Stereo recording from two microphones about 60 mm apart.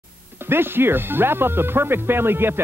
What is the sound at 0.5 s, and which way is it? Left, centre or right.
Speech, right.